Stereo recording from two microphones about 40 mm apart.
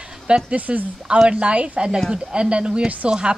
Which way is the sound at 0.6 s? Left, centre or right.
Right.